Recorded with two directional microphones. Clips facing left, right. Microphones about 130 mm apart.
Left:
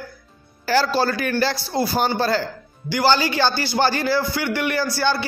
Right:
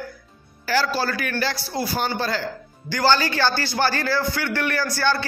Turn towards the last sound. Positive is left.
turn(degrees=15)  # may be behind; listen again after turning